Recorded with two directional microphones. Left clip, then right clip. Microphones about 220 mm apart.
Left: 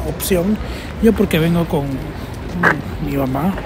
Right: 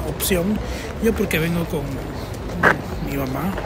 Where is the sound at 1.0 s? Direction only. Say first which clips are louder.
Left 5 dB; 10° left (ahead or behind).